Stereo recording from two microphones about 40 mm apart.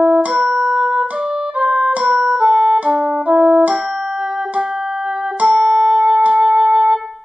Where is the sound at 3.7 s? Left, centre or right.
Centre; by 5.6 s right.